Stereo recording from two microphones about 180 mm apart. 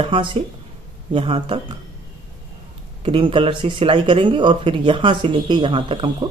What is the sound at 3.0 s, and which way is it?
Speech, 30° right (ahead or behind).